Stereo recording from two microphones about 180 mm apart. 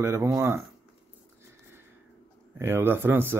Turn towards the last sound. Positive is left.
turn(degrees=-10)  # may be behind; listen again after turning